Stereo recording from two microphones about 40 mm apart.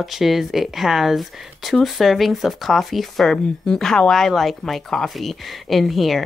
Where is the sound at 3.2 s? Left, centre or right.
Centre.